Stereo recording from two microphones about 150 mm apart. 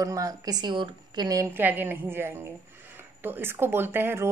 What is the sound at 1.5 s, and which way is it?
A woman's voice, 10° right (ahead or behind).